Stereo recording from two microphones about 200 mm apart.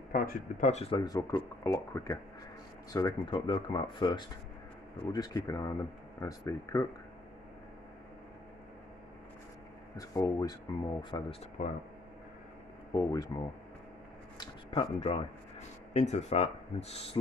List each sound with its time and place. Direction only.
0.1 s speech: 45° left (ahead or behind); by 6.9 s 15° left (ahead or behind)
9.9 s speech: 15° left (ahead or behind)
11.6 s speech: 35° left (ahead or behind)
12.9 s speech: 20° left (ahead or behind)
14.4 s speech: 25° left (ahead or behind)